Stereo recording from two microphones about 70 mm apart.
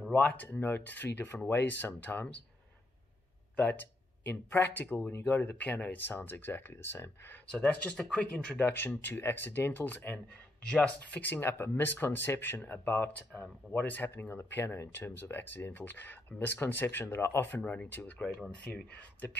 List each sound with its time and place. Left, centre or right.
0.1 s speech: centre
3.5 s speech: left
7.4 s speech: centre
8.5 s speech: left
17.5 s speech: left